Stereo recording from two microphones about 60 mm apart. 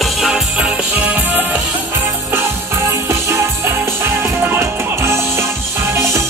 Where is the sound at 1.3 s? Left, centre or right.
Right.